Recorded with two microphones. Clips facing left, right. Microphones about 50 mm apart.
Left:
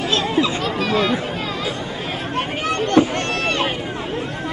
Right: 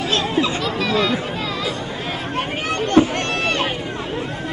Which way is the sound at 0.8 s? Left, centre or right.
Left.